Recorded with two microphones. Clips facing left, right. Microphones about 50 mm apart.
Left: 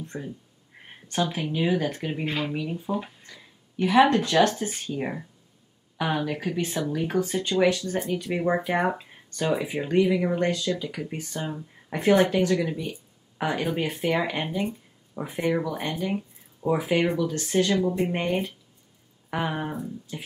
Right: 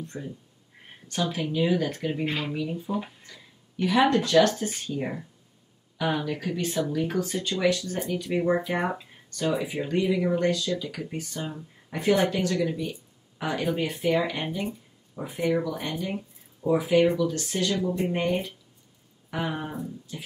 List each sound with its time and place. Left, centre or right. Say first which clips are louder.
0.0 s speech: left 1 dB; centre
2.2 s speech: left 4 dB; centre
2.5 s speech: even; centre
2.9 s speech: left 1 dB; centre
3.7 s speech: left 3 dB; centre
6.2 s speech: left 1 dB; centre
8.5 s speech: left 2 dB; centre
12.4 s speech: left 1 dB; centre
14.6 s a sound: left 3 dB; centre
15.4 s speech: even; centre
16.8 s speech: right 4 dB; centre
17.3 s speech: left 4 dB; left
17.7 s speech: left 2 dB; centre